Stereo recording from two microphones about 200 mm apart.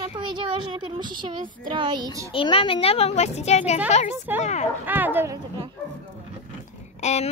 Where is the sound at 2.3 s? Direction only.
25° left (ahead or behind).